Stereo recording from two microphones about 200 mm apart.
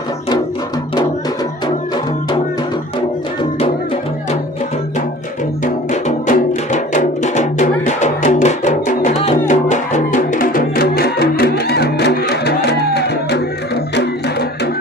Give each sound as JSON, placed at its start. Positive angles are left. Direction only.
{"t": 5.9, "sound": "music", "side_deg": 35}